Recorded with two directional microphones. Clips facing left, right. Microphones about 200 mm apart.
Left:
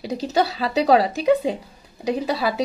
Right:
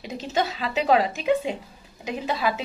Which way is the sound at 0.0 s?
35° left (ahead or behind).